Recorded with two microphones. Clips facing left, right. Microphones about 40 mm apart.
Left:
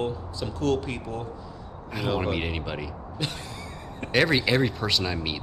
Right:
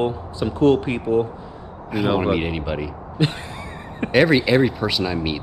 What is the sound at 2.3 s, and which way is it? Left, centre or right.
Speech, centre.